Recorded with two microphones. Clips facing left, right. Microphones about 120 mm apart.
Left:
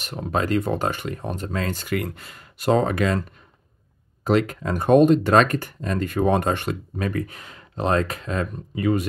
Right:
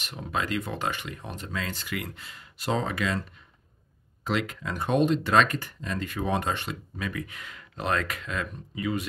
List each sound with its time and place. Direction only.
0.0 s speech: 40° left (ahead or behind)
8.7 s speech: 50° left (ahead or behind)